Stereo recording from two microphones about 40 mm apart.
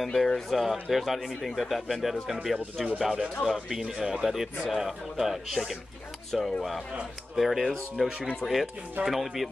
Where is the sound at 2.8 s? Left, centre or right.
Centre.